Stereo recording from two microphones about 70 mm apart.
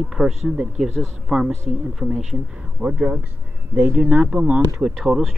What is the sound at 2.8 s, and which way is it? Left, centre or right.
Speech, centre.